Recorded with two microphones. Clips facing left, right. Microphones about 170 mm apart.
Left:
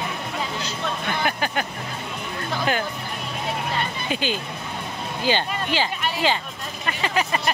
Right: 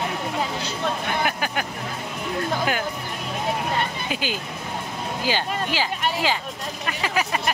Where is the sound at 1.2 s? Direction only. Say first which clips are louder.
Left 1 dB; 5° right (ahead or behind).